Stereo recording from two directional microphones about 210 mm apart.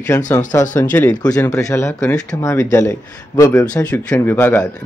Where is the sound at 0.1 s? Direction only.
15° left (ahead or behind).